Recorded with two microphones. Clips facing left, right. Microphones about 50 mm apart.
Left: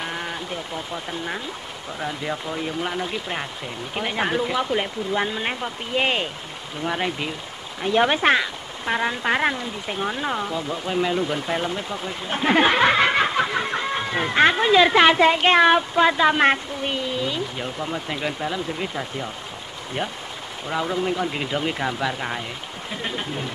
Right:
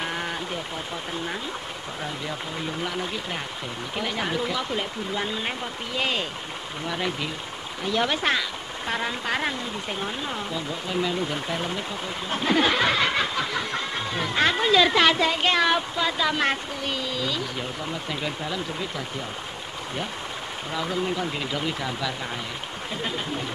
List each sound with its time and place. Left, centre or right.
0.0 s a sound: centre
2.0 s speech: centre
8.8 s speech: centre
11.1 s speech: centre
12.3 s a sound: left
18.1 s speech: centre
20.7 s speech: centre